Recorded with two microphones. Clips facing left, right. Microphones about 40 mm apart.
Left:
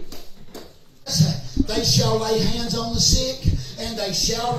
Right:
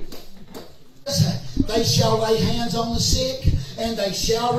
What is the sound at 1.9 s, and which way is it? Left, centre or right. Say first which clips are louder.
A man's voice: right 1 dB; centre.